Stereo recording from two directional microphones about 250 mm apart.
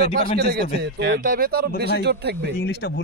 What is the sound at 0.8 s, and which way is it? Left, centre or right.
Speech, right.